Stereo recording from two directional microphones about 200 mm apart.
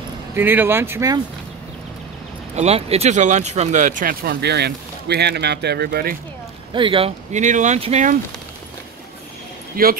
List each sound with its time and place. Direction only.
0.4 s speech: 10° right (ahead or behind)
2.5 s speech: 30° right (ahead or behind); by 6.1 s 50° right (ahead or behind)
6.7 s speech: 25° right (ahead or behind)
9.8 s speech: 45° right (ahead or behind)